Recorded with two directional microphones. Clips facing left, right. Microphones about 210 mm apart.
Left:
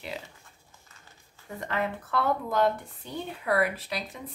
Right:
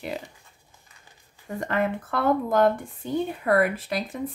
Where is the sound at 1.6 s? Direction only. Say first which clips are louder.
Right 5 dB; 50° right (ahead or behind).